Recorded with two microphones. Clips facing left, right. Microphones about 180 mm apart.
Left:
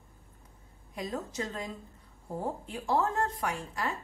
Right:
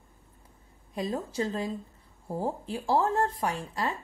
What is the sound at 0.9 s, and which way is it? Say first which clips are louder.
A woman's voice: right 5 dB; 35° right (ahead or behind).